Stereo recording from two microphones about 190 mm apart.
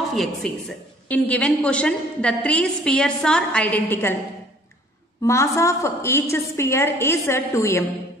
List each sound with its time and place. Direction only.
0.1 s a woman's voice: centre (ahead or behind)
5.2 s a woman's voice: 15° left (ahead or behind)